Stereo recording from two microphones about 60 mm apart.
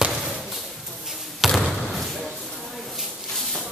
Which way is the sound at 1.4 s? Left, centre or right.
Centre.